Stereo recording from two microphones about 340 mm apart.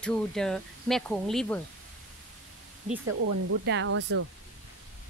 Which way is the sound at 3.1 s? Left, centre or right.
Right.